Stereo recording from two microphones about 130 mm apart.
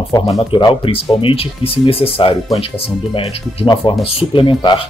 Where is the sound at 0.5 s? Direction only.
40° left (ahead or behind).